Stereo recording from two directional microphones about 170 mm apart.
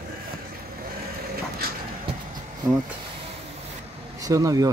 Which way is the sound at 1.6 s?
65° right (ahead or behind).